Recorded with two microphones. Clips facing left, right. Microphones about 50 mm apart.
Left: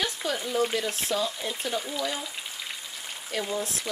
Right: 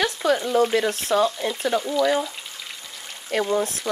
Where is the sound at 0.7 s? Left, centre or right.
Right.